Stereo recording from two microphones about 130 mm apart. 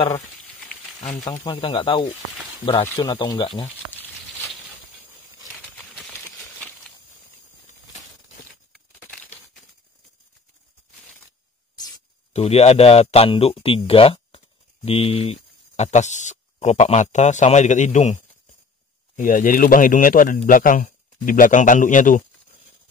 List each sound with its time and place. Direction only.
1.5 s speech: 45° left (ahead or behind)
8.7 s a sound: 5° left (ahead or behind)
12.3 s speech: 55° left (ahead or behind); by 18.2 s 70° left (ahead or behind)
19.1 s speech: 85° left